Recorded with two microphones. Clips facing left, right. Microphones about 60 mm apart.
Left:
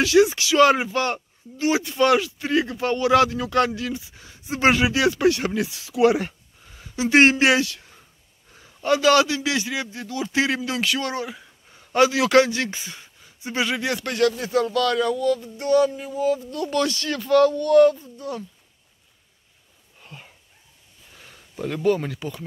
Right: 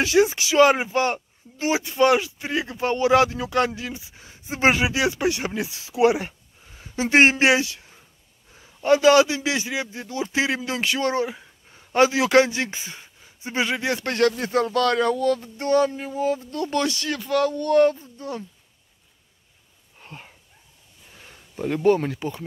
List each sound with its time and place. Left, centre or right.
0.0 s a man's voice: right
8.5 s a sound: centre
8.8 s a man's voice: right
16.7 s a man's voice: right
20.0 s a sound: right
22.0 s a man's voice: right